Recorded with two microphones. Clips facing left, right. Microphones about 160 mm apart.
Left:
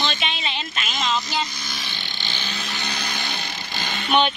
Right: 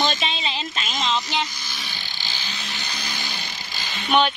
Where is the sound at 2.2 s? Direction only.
70° left (ahead or behind).